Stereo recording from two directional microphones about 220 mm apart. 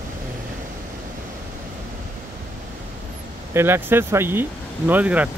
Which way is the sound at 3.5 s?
10° right (ahead or behind).